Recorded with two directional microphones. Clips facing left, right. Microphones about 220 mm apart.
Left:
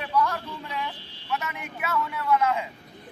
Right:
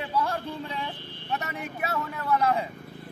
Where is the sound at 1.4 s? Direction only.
35° right (ahead or behind).